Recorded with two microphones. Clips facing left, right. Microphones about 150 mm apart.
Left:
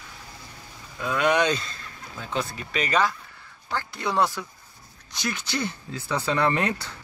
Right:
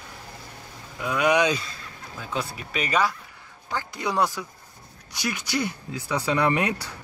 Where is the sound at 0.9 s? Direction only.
15° right (ahead or behind).